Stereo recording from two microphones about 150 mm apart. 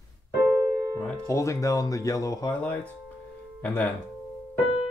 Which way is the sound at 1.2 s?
20° left (ahead or behind).